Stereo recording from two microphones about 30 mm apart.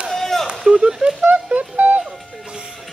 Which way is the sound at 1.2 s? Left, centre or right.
Right.